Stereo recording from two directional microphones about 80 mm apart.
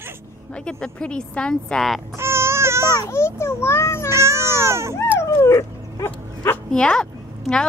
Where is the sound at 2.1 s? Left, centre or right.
Right.